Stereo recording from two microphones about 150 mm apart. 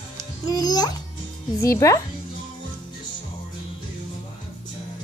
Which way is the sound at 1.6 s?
20° left (ahead or behind).